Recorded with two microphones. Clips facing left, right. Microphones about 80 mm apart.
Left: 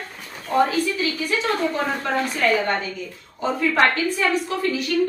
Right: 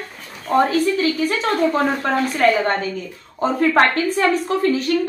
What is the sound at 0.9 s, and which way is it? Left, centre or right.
A woman's voice, right.